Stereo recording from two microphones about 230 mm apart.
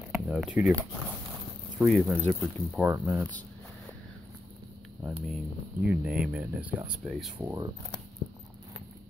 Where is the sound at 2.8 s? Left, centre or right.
Centre.